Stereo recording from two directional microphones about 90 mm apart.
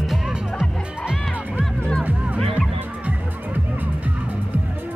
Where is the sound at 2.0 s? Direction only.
15° right (ahead or behind).